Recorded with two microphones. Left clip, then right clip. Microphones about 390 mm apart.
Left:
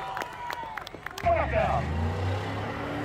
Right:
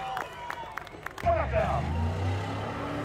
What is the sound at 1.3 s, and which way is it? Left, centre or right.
Vehicle, left.